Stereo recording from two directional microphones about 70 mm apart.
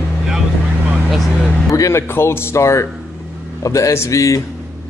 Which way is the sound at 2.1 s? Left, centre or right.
Left.